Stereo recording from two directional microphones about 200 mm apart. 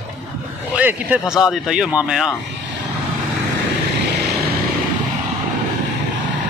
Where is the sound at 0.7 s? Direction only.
5° right (ahead or behind).